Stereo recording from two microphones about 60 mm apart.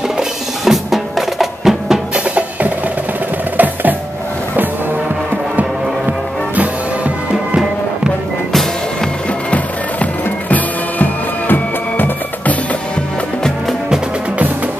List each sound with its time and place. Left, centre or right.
0.2 s percussion: centre
2.1 s percussion: right
3.5 s music: right
10.5 s music: left